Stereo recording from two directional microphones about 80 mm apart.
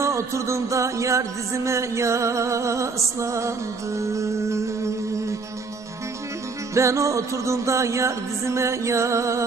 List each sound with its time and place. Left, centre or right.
0.0 s music: right
6.7 s music: right